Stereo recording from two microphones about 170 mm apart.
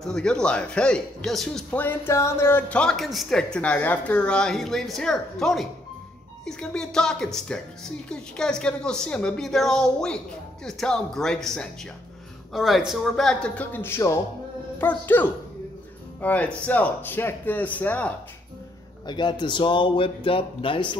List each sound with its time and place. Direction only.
0.0 s speech: 5° left (ahead or behind)
19.0 s speech: 25° left (ahead or behind)